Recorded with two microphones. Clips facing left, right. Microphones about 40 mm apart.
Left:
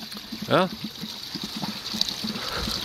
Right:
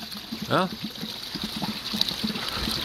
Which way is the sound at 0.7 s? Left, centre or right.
Centre.